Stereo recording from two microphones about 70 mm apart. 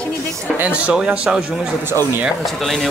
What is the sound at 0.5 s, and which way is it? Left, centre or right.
Speech, right.